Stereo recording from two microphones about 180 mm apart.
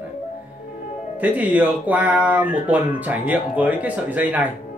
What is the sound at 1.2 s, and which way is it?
Speech, 10° right (ahead or behind).